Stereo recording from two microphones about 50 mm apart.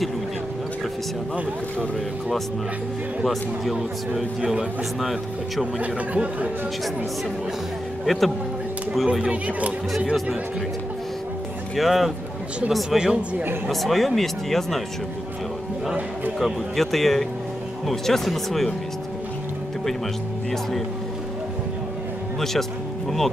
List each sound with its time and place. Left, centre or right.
4.4 s speech: centre
5.8 s speech: right
8.0 s speech: centre
9.2 s speech: right
11.7 s speech: centre
13.7 s speech: centre
16.3 s speech: centre
22.4 s music: centre